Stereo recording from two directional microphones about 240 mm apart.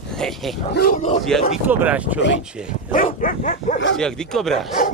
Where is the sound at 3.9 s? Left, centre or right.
Centre.